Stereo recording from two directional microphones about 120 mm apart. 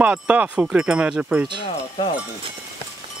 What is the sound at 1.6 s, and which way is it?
Wind chime, 45° left (ahead or behind).